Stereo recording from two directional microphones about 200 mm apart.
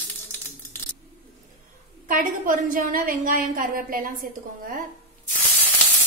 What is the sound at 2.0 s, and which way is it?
A woman's voice, 40° right (ahead or behind).